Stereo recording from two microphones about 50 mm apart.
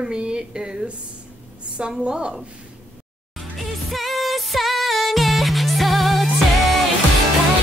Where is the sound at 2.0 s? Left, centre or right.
Centre.